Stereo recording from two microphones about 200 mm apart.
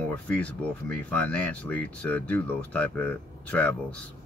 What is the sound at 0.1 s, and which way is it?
Speech, 5° left (ahead or behind).